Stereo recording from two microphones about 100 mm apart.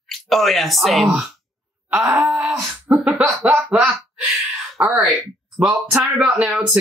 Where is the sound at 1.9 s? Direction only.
15° right (ahead or behind).